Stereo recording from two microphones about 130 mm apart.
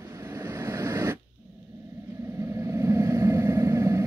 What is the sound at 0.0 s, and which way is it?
Vehicle, 20° right (ahead or behind).